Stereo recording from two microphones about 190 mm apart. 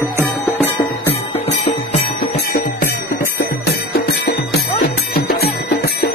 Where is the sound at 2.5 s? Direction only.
55° left (ahead or behind).